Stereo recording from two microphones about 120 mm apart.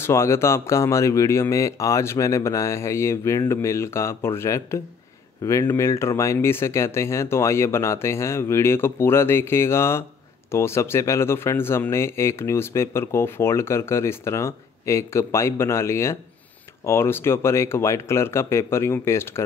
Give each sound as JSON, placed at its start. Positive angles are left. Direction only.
{"t": 0.0, "sound": "speech", "side_deg": 25}